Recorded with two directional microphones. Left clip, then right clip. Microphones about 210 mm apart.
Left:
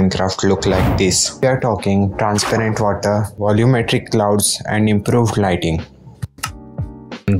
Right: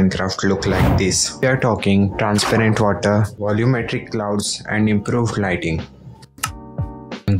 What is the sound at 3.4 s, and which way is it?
Speech, 15° left (ahead or behind).